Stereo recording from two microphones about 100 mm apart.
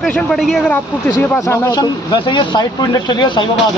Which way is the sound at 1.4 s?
40° left (ahead or behind).